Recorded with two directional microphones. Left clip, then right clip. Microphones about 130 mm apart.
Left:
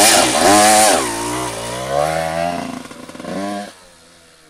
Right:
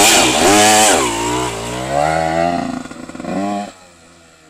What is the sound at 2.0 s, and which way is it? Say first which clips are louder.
Chainsaw: right 4 dB; 25° left (ahead or behind).